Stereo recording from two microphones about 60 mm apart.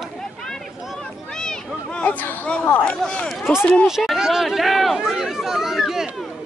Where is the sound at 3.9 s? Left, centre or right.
Centre.